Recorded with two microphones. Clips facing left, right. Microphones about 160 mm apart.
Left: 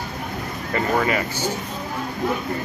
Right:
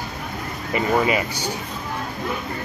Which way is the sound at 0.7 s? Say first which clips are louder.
Right 1 dB; 15° right (ahead or behind).